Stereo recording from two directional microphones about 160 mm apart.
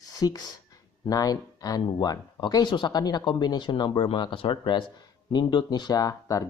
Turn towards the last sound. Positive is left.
turn(degrees=20)  # may be behind; listen again after turning